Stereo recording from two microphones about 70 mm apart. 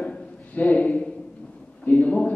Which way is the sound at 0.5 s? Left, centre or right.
Left.